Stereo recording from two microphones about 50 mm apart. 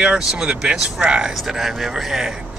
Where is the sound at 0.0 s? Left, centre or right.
Centre.